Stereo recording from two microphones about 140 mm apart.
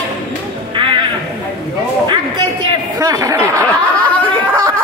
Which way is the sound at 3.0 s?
25° right (ahead or behind).